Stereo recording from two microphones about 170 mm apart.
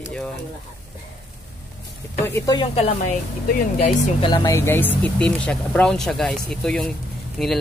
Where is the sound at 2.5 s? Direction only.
30° left (ahead or behind).